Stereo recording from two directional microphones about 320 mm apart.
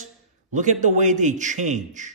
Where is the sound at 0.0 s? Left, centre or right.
Right.